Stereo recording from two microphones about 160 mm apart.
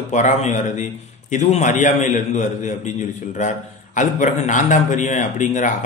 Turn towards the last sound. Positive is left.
turn(degrees=50)  # may be behind; listen again after turning